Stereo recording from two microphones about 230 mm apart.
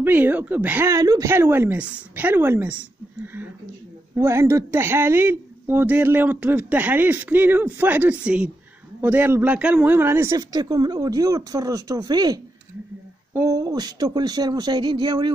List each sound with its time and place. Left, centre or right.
0.0 s speech: centre
4.1 s speech: centre